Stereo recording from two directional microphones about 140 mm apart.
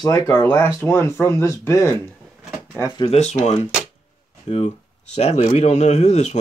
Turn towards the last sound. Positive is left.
turn(degrees=55)  # may be behind; listen again after turning